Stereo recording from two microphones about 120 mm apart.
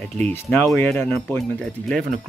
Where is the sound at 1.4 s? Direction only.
5° left (ahead or behind).